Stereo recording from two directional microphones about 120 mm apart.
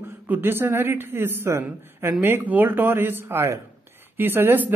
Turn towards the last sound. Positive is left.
turn(degrees=-15)  # may be behind; listen again after turning